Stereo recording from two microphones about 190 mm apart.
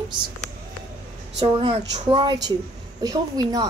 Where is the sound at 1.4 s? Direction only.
30° right (ahead or behind).